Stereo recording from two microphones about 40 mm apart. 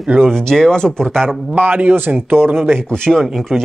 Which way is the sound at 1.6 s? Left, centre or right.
Right.